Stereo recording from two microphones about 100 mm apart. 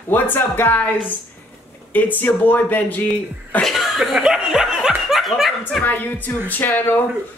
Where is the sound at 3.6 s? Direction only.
Centre (ahead or behind).